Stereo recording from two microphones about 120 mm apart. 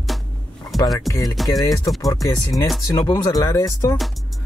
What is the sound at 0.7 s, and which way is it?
Speech, centre (ahead or behind).